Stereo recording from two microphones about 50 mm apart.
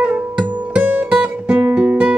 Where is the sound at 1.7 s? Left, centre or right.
Right.